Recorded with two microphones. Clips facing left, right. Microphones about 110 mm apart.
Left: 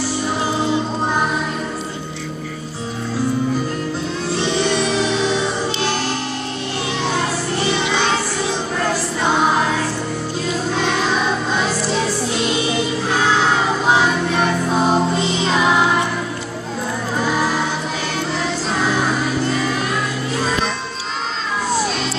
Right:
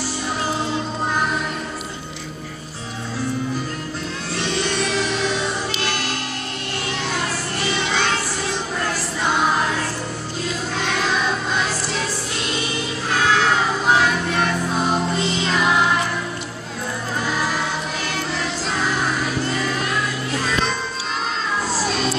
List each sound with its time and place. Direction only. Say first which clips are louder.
4.4 s music: left 4 dB; 20° left (ahead or behind)
7.7 s music: left 1 dB; 20° left (ahead or behind)
13.2 s music: even; 20° left (ahead or behind)